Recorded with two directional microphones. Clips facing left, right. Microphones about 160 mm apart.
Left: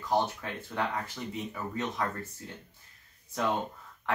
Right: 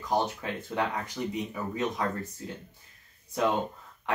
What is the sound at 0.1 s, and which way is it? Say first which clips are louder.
Speech: right 1 dB; 15° right (ahead or behind).